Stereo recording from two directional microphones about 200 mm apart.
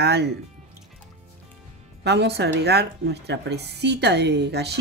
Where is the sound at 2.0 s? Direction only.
55° right (ahead or behind).